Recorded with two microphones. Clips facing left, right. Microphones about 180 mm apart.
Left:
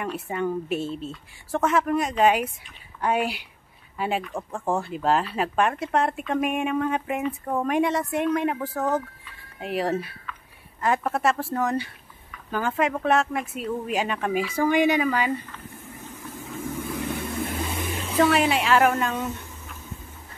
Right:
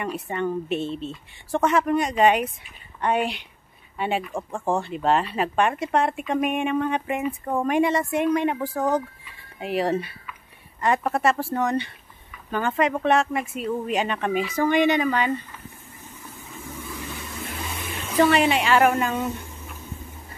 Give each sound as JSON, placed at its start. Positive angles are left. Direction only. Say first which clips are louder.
{"t": 0.3, "sound": "speech", "louder": "even", "side_deg": 5}
{"t": 16.3, "sound": "vehicle", "louder": "left 7 dB", "side_deg": 50}
{"t": 18.1, "sound": "speech", "louder": "right 2 dB", "side_deg": 0}